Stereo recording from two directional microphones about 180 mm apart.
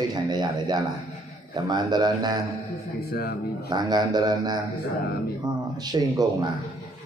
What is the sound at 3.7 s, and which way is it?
Speech, 25° right (ahead or behind).